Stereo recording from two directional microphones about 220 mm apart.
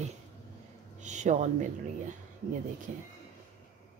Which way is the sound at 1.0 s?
35° right (ahead or behind).